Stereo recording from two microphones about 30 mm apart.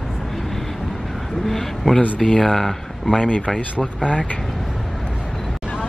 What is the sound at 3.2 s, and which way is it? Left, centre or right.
Speech, left.